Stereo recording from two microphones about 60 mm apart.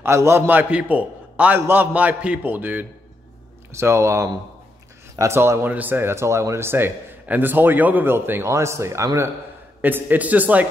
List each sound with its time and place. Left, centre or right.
0.0 s speech: right
0.5 s a man's voice: right
3.7 s speech: right
5.3 s speech: right
5.6 s speech: right
6.6 s a man's voice: right
9.8 s a man's voice: right